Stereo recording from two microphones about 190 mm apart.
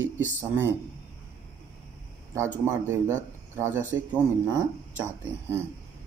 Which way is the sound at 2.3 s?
10° right (ahead or behind).